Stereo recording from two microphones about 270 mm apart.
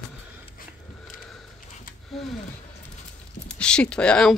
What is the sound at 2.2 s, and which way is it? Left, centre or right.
Speech, centre.